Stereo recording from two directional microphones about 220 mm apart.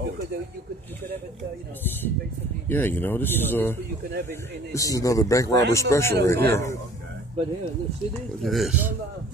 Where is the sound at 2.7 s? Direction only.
10° left (ahead or behind).